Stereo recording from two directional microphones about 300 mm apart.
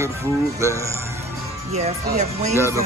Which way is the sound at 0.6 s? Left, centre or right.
Centre.